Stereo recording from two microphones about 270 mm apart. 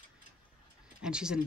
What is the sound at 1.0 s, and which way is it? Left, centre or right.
Speech, centre.